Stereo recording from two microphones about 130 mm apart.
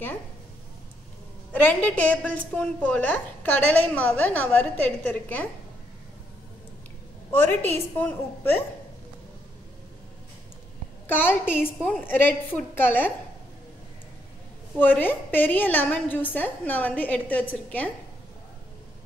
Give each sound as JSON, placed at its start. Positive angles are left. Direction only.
{"t": 1.5, "sound": "a woman's voice", "side_deg": 15}
{"t": 7.4, "sound": "a woman's voice", "side_deg": 15}
{"t": 11.1, "sound": "a woman's voice", "side_deg": 15}
{"t": 14.8, "sound": "a woman's voice", "side_deg": 15}